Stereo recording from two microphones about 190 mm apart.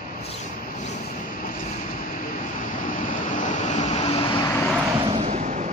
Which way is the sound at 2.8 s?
45° left (ahead or behind).